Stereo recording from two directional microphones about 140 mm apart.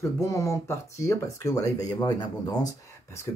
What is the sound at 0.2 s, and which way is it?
Speech, 20° left (ahead or behind).